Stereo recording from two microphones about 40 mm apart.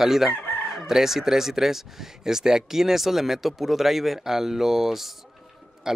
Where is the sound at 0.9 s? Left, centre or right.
Centre.